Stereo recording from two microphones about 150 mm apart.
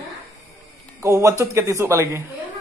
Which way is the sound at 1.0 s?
20° right (ahead or behind).